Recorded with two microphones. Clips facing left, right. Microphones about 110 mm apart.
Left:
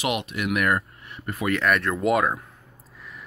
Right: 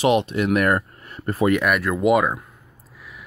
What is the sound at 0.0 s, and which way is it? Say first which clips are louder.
Speech: right 8 dB; 30° right (ahead or behind).